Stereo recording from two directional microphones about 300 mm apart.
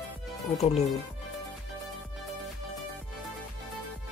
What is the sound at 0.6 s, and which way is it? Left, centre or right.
Speech, left.